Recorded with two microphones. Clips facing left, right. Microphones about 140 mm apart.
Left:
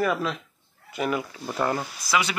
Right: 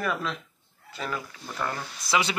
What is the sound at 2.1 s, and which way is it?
Speech, 25° right (ahead or behind).